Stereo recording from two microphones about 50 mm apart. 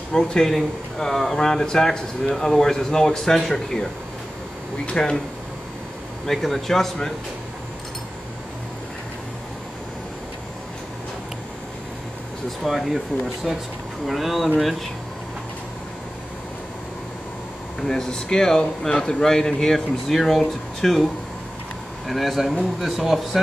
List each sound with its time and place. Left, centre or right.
0.1 s speech: centre
4.8 s speech: centre
6.2 s speech: centre
12.4 s speech: centre
17.7 s speech: centre